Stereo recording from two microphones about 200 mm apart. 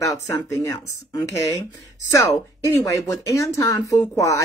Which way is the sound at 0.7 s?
15° left (ahead or behind).